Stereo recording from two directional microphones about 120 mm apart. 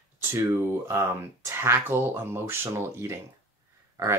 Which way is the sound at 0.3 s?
20° right (ahead or behind).